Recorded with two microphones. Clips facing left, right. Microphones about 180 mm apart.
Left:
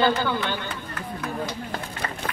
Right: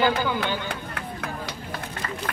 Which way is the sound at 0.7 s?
60° right (ahead or behind).